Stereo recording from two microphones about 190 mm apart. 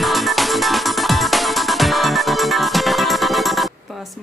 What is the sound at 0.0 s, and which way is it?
Music, centre (ahead or behind).